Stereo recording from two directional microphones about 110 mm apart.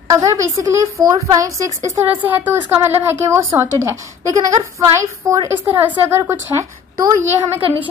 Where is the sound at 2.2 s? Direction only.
15° right (ahead or behind).